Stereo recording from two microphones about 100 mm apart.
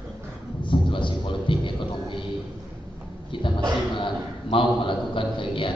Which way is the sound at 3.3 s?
60° left (ahead or behind).